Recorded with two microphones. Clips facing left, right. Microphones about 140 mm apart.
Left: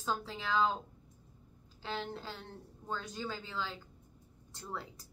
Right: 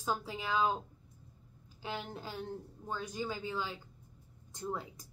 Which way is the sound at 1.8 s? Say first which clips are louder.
Left 1 dB; 15° right (ahead or behind).